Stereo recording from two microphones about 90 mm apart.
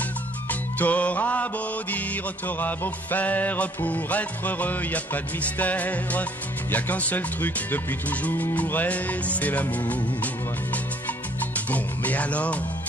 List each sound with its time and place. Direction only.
0.5 s music: 15° left (ahead or behind)
11.5 s speech: 15° left (ahead or behind)